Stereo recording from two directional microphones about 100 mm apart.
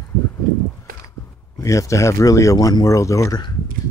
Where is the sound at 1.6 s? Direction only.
30° left (ahead or behind).